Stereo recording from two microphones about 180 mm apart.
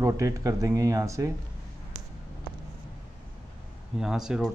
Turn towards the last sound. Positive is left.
turn(degrees=-5)  # may be behind; listen again after turning